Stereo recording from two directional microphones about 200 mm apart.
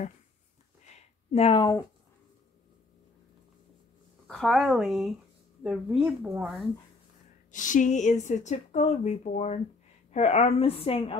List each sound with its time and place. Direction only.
0.9 s a sound: 30° left (ahead or behind)
4.3 s speech: centre (ahead or behind)
7.5 s a woman's voice: 40° left (ahead or behind)